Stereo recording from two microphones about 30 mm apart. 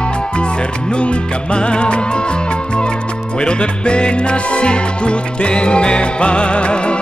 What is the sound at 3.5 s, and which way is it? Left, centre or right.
Music, left.